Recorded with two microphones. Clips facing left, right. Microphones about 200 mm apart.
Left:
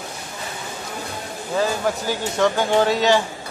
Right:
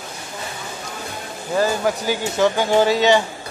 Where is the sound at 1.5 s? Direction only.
Centre (ahead or behind).